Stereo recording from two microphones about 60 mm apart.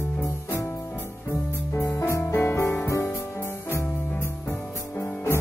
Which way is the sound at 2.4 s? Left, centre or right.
Left.